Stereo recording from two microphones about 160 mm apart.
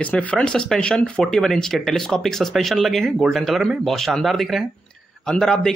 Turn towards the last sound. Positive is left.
turn(degrees=5)  # may be behind; listen again after turning